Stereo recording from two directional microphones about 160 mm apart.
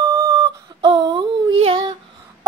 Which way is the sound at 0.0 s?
20° right (ahead or behind).